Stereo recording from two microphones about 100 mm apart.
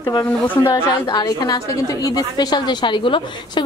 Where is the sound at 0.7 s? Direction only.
45° left (ahead or behind).